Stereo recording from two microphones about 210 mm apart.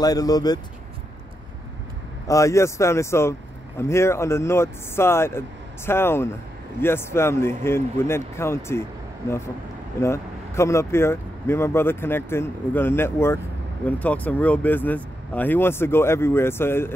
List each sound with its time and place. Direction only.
0.0 s speech: 20° left (ahead or behind)
2.2 s speech: 15° left (ahead or behind)
9.9 s speech: 10° left (ahead or behind)